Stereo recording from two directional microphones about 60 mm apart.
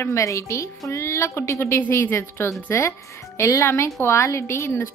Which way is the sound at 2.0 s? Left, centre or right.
Left.